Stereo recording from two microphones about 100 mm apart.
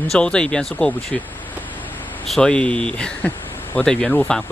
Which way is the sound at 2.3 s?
10° left (ahead or behind).